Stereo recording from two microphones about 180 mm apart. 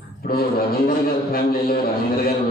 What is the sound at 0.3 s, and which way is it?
A man's voice, 55° left (ahead or behind).